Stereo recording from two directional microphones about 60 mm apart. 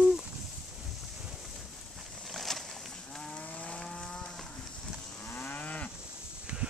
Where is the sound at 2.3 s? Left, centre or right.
Centre.